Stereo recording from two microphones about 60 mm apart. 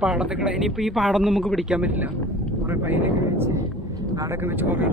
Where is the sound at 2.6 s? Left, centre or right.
Right.